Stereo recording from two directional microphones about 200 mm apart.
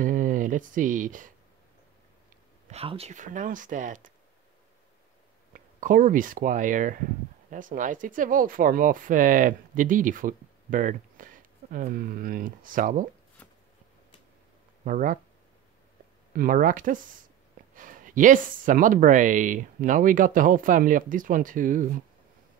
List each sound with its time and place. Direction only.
0.0 s speech: 40° right (ahead or behind)
2.7 s speech: 30° right (ahead or behind)
5.5 s speech: 40° right (ahead or behind)
14.9 s speech: 40° right (ahead or behind)
16.3 s speech: 40° right (ahead or behind)